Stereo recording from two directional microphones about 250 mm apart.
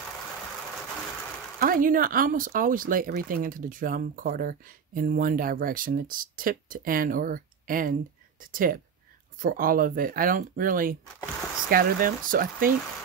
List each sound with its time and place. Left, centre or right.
1.6 s speech: right